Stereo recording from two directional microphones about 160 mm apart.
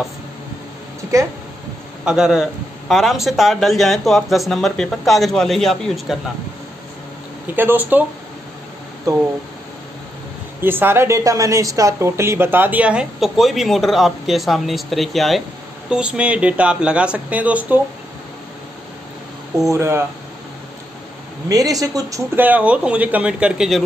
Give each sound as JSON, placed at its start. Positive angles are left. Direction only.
{"t": 1.1, "sound": "speech", "side_deg": -20}
{"t": 2.0, "sound": "speech", "side_deg": -5}
{"t": 7.5, "sound": "a woman's voice", "side_deg": -10}
{"t": 10.6, "sound": "a woman's voice", "side_deg": -15}
{"t": 19.7, "sound": "a woman's voice", "side_deg": -15}
{"t": 21.5, "sound": "a woman's voice", "side_deg": -20}